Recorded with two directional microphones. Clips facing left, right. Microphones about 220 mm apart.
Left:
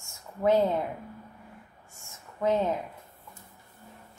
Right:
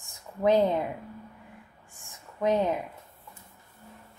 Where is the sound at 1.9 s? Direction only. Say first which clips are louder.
Even; 15° right (ahead or behind).